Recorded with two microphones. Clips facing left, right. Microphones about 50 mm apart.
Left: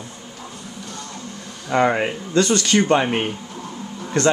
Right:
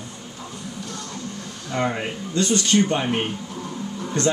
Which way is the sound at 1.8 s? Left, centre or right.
Left.